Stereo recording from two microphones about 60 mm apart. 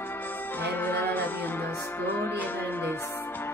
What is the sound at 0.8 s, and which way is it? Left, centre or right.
Music, left.